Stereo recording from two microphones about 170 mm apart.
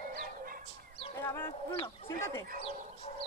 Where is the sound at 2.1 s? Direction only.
15° left (ahead or behind).